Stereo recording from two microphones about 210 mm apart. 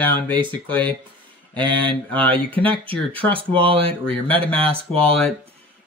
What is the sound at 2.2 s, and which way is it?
Speech, 5° left (ahead or behind).